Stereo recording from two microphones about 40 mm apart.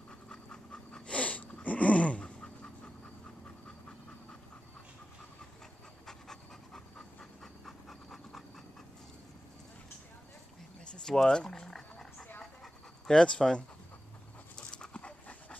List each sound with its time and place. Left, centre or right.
0.3 s pant: left
1.2 s a sound: left
6.0 s pant: centre
7.6 s pant: centre
10.9 s a sound: centre
13.0 s speech: left
14.5 s dog: left